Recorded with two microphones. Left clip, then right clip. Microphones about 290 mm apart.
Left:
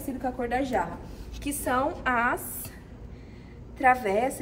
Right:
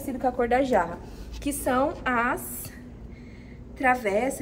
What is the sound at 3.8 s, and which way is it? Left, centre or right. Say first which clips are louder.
Speech: left 1 dB; centre.